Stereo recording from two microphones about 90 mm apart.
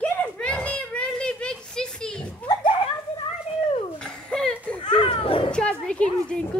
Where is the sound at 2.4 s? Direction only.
65° left (ahead or behind).